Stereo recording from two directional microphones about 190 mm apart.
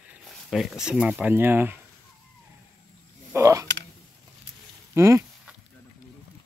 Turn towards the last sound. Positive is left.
turn(degrees=-15)  # may be behind; listen again after turning